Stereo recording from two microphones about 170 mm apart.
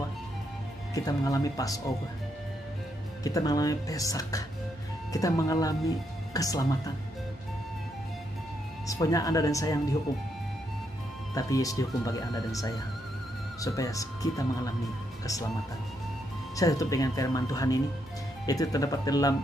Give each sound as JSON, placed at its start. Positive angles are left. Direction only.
{"t": 0.9, "sound": "speech", "side_deg": 20}
{"t": 3.3, "sound": "speech", "side_deg": 20}
{"t": 8.8, "sound": "speech", "side_deg": 20}
{"t": 11.3, "sound": "speech", "side_deg": 20}
{"t": 13.6, "sound": "speech", "side_deg": 20}
{"t": 16.5, "sound": "speech", "side_deg": 20}